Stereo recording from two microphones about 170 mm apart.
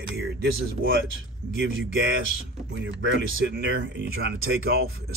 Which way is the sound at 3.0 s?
90° right.